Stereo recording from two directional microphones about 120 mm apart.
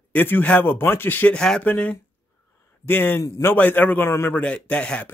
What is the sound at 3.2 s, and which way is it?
Speech, 30° left (ahead or behind).